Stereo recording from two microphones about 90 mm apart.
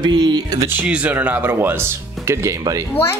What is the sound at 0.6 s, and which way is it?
Speech, 15° right (ahead or behind).